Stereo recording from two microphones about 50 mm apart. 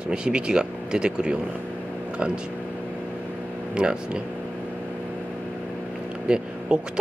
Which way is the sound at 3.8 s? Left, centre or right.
Centre.